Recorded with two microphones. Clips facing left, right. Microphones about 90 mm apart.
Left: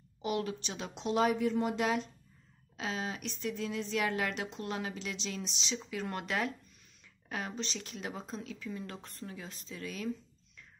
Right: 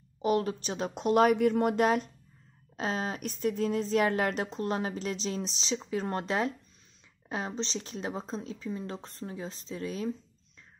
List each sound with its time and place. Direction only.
0.2 s speech: 40° right (ahead or behind)